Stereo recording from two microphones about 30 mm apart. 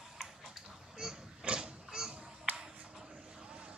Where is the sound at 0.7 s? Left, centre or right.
Centre.